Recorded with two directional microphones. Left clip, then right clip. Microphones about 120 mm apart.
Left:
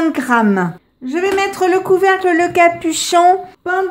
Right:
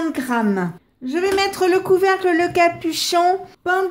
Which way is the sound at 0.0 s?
25° left (ahead or behind).